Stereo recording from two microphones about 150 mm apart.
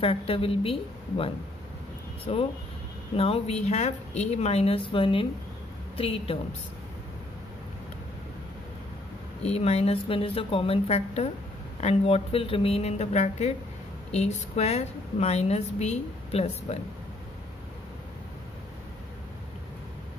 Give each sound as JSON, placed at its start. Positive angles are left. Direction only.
{"t": 0.0, "sound": "a woman's voice", "side_deg": 40}
{"t": 9.4, "sound": "a woman's voice", "side_deg": 45}